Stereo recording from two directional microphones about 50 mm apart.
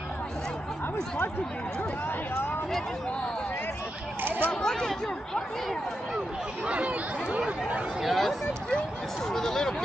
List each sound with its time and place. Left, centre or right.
4.2 s speech: right
4.6 s speech: centre
6.6 s speech: right
8.0 s speech: centre